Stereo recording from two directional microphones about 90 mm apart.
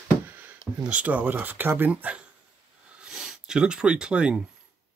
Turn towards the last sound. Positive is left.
turn(degrees=-10)  # may be behind; listen again after turning